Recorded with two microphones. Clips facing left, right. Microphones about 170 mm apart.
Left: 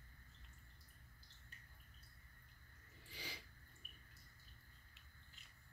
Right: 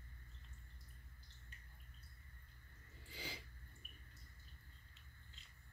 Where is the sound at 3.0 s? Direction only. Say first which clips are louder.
Right 3 dB; 25° right (ahead or behind).